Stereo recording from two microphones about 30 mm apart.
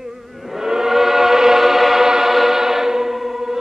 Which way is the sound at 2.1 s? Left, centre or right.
Centre.